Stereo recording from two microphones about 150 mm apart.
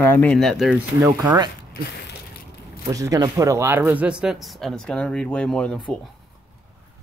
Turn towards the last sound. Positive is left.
turn(degrees=5)  # may be behind; listen again after turning